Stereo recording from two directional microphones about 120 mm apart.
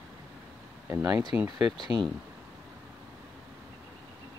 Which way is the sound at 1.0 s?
35° right (ahead or behind).